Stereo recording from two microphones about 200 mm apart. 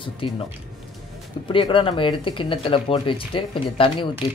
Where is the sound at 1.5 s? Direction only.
25° left (ahead or behind).